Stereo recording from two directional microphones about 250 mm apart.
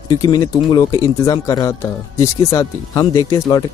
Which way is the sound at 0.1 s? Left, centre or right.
Centre.